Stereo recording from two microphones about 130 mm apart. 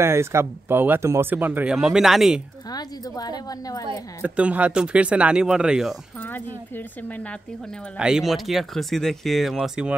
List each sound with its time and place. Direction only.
0.0 s speech: 20° right (ahead or behind); by 2.4 s centre (ahead or behind)
2.7 s a woman's voice: 30° left (ahead or behind)
4.2 s speech: 10° right (ahead or behind)
6.2 s speech: 15° left (ahead or behind)
8.0 s speech: 5° right (ahead or behind)